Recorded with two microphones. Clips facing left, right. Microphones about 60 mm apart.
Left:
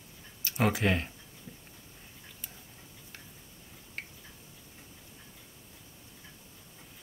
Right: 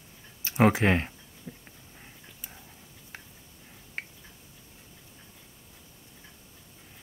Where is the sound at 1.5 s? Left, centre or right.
Right.